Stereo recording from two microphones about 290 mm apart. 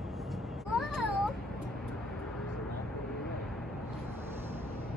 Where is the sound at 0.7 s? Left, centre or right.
Centre.